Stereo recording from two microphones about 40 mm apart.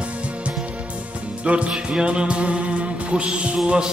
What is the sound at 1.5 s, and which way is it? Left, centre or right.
Music, right.